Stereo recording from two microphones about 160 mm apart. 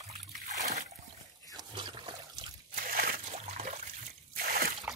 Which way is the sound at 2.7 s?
65° right (ahead or behind).